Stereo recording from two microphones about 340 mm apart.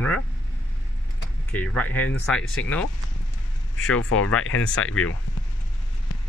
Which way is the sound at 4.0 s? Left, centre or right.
Left.